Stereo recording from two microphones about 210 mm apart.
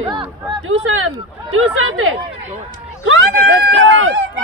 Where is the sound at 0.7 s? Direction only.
75° right (ahead or behind).